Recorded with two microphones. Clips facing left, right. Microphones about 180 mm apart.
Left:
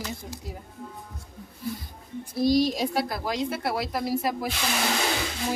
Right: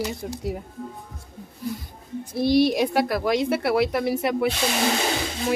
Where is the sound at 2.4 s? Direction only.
65° right (ahead or behind).